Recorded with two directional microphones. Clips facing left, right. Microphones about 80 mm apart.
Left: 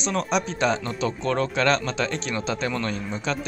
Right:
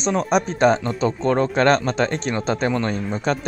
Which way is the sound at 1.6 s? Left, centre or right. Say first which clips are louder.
Right 5 dB; right.